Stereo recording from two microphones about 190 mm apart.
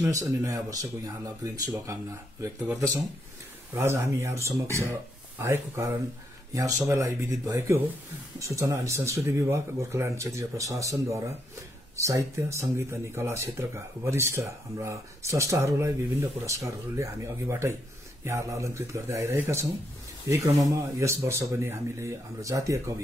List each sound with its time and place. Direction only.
0.0 s speech: 15° right (ahead or behind)
3.7 s speech: 15° right (ahead or behind)